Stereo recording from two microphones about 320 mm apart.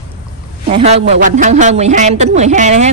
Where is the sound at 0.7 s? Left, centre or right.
Centre.